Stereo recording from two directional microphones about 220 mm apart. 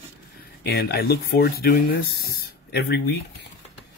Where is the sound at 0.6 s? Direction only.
45° left (ahead or behind).